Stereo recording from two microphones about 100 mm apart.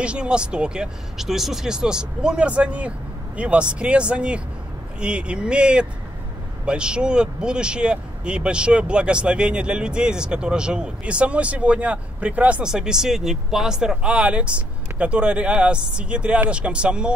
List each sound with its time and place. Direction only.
0.0 s speech: 10° right (ahead or behind)